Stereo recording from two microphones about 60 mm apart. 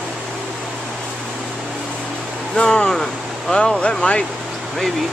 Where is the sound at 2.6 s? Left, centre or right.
Centre.